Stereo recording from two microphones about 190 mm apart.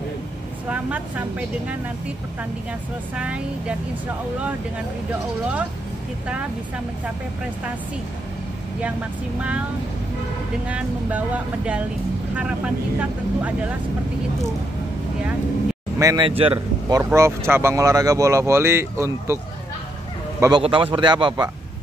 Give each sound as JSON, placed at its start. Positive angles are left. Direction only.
{"t": 0.7, "sound": "speech", "side_deg": -10}
{"t": 3.2, "sound": "speech", "side_deg": -5}
{"t": 10.7, "sound": "speech", "side_deg": -5}
{"t": 16.0, "sound": "speech", "side_deg": -15}
{"t": 16.3, "sound": "a man's voice", "side_deg": -30}
{"t": 16.5, "sound": "a man's voice", "side_deg": -15}